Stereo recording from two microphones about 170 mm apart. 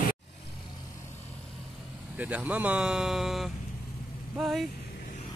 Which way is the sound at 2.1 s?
10° right (ahead or behind).